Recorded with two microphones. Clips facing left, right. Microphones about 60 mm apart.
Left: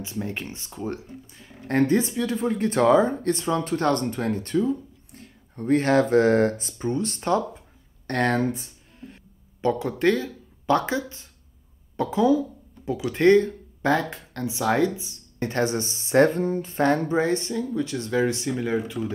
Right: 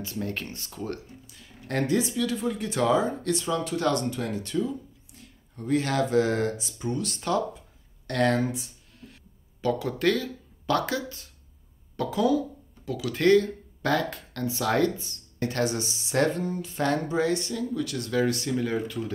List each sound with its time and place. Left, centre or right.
0.0 s speech: centre
1.2 s a sound: left
1.7 s a woman's voice: left
8.1 s a woman's voice: left
9.0 s a sound: left
10.7 s speech: left
15.3 s a woman's voice: left